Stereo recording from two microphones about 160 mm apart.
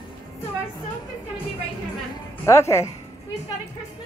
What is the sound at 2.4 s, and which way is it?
Speech, 15° left (ahead or behind).